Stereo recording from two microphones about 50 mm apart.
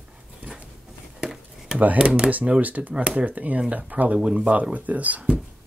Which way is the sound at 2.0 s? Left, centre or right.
Right.